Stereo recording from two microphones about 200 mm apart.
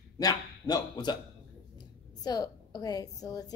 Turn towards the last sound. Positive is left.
turn(degrees=20)  # may be behind; listen again after turning